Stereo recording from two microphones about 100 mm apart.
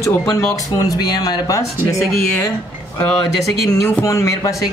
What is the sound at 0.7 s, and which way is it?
Speech, 40° left (ahead or behind).